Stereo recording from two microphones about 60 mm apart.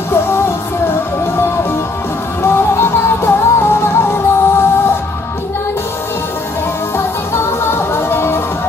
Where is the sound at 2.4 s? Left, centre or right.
Left.